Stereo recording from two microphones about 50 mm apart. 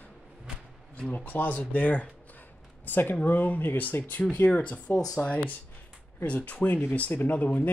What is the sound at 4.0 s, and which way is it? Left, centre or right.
Speech, left.